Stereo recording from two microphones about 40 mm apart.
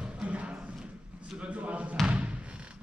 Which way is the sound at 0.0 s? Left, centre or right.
Right.